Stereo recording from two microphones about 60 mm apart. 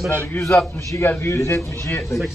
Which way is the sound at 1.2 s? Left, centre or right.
Left.